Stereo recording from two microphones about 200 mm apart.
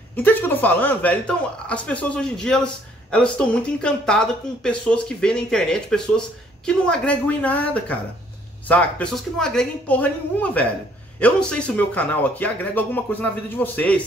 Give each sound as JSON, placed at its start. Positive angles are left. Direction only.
{"t": 0.1, "sound": "speech", "side_deg": 10}